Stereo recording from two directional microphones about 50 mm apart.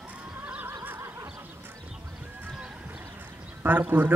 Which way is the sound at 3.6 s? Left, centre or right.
Right.